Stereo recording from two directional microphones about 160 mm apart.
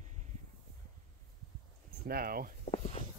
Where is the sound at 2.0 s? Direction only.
70° right (ahead or behind).